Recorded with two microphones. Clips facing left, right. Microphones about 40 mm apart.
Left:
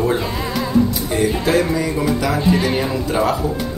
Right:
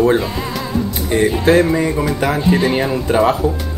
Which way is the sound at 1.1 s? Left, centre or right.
Right.